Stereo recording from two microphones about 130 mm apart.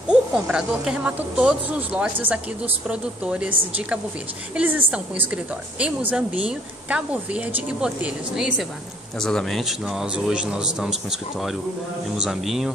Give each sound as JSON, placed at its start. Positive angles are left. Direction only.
{"t": 0.1, "sound": "a woman's voice", "side_deg": -10}
{"t": 4.6, "sound": "a woman's voice", "side_deg": -10}